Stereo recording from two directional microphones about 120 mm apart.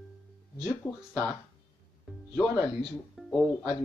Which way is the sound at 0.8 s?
25° left (ahead or behind).